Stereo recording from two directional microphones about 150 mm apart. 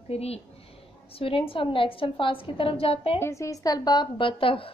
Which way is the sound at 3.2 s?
20° left (ahead or behind).